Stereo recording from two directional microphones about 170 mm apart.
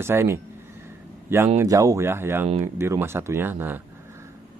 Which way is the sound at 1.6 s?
20° right (ahead or behind).